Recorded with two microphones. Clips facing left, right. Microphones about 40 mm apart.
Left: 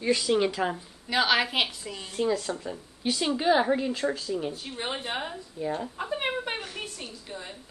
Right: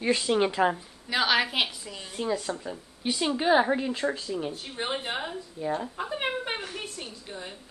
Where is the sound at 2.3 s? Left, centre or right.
Centre.